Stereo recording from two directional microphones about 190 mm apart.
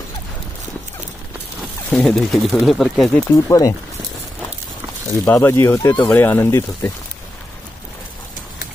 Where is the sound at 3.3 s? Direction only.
20° left (ahead or behind).